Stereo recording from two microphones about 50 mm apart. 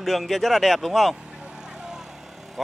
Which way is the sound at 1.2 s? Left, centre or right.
Centre.